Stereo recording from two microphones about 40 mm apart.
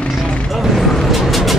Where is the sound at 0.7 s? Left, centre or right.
Centre.